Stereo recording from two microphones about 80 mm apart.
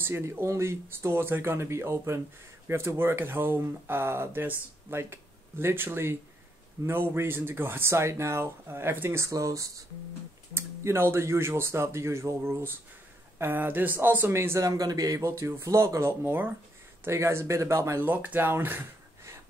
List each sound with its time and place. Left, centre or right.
0.0 s speech: right
9.2 s speech: right
10.5 s speech: right
14.6 s speech: right
18.0 s speech: right